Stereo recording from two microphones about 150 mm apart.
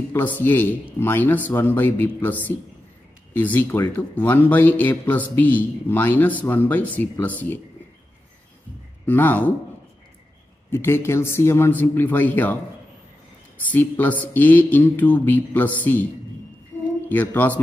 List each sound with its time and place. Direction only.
0.4 s speech: 10° left (ahead or behind)
3.3 s speech: 10° left (ahead or behind)
9.0 s speech: 15° left (ahead or behind)
10.7 s speech: 15° left (ahead or behind)
13.7 s speech: 10° left (ahead or behind)
16.7 s mantra: 10° left (ahead or behind)
17.1 s speech: 10° left (ahead or behind)